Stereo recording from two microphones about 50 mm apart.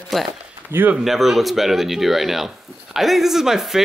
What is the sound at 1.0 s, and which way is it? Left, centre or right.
Speech, centre.